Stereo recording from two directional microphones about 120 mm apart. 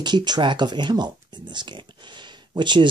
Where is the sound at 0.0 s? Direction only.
40° right (ahead or behind).